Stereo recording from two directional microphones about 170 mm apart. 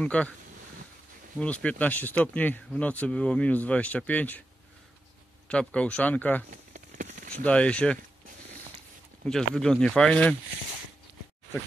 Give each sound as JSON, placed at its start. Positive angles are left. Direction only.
{"t": 0.0, "sound": "speech", "side_deg": 5}
{"t": 1.4, "sound": "speech", "side_deg": 5}
{"t": 5.5, "sound": "speech", "side_deg": 5}
{"t": 6.5, "sound": "a sound", "side_deg": -50}
{"t": 7.4, "sound": "speech", "side_deg": 5}
{"t": 9.3, "sound": "speech", "side_deg": 5}